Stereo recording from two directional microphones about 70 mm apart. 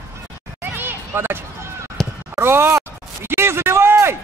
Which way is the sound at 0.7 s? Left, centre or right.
Right.